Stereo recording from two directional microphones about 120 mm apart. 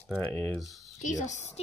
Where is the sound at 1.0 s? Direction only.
90° left.